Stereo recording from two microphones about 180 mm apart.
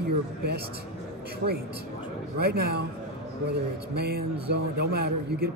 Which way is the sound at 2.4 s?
60° right (ahead or behind).